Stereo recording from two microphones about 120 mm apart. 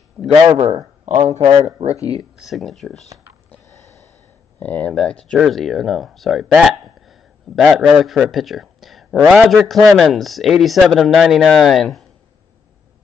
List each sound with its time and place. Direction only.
0.2 s speech: 25° right (ahead or behind)
0.5 s speech: 60° right (ahead or behind)
1.0 s speech: 90° right
1.9 s speech: 30° left (ahead or behind)
2.3 s speech: centre (ahead or behind)
4.6 s speech: 10° left (ahead or behind)